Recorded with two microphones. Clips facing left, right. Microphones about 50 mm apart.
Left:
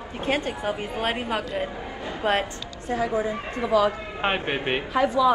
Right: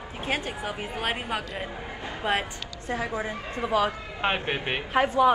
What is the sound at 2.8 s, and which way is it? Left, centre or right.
Speech, right.